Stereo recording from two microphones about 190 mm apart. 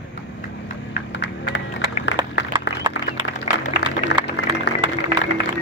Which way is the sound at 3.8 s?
65° left (ahead or behind).